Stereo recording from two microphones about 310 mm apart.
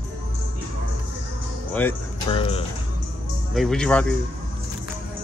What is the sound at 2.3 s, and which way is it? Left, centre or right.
Speech, centre.